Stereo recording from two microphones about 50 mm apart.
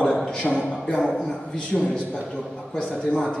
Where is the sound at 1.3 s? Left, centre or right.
Centre.